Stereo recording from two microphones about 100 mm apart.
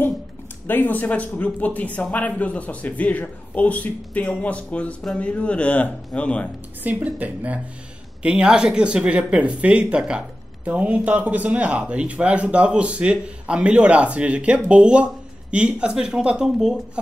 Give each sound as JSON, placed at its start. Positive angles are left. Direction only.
{"t": 0.7, "sound": "speech", "side_deg": 20}
{"t": 6.8, "sound": "speech", "side_deg": -15}